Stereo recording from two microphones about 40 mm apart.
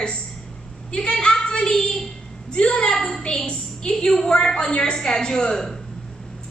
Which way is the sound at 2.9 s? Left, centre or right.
Centre.